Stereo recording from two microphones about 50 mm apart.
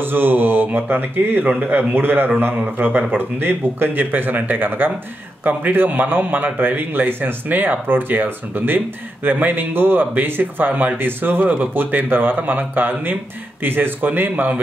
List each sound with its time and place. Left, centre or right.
0.0 s a man's voice: right
10.7 s speech: right
11.0 s a man's voice: right
11.4 s a man's voice: right